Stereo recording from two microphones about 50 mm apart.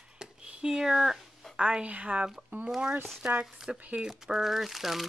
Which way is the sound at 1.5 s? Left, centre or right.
Right.